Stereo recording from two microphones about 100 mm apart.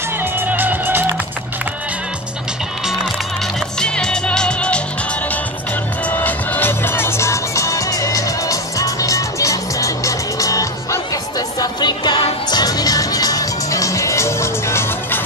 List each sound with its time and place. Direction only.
0.2 s music: 20° right (ahead or behind)
3.5 s music: 5° left (ahead or behind)
6.0 s music: 15° left (ahead or behind)